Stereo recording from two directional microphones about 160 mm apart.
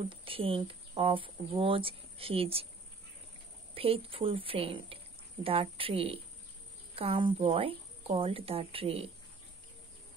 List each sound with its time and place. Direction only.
0.2 s speech: 35° right (ahead or behind)
3.7 s speech: 35° right (ahead or behind)